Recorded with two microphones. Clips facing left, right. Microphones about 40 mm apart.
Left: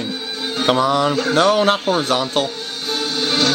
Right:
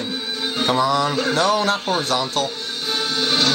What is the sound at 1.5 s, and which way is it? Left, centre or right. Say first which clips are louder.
Speech: left 5 dB; left.